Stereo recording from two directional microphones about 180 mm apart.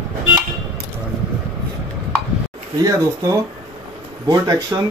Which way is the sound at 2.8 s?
20° right (ahead or behind).